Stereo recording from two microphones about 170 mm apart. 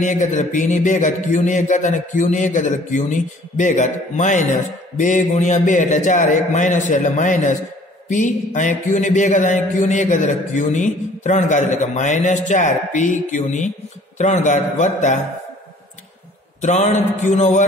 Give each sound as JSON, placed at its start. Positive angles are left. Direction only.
{"t": 0.0, "sound": "a man's voice", "side_deg": 45}
{"t": 16.6, "sound": "a man's voice", "side_deg": 45}